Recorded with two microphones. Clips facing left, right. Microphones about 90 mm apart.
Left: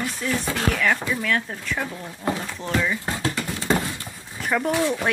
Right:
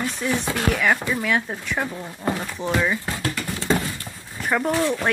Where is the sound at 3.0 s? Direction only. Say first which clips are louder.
Left 1 dB; 20° left (ahead or behind).